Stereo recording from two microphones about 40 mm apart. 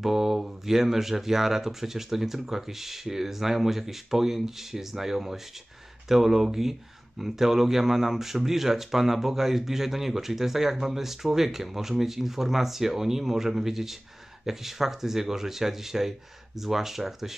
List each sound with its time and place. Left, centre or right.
0.0 s speech: centre